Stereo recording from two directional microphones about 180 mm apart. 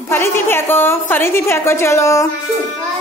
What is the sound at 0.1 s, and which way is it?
A woman's voice, 15° left (ahead or behind).